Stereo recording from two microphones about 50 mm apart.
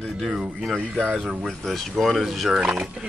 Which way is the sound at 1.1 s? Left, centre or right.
Centre.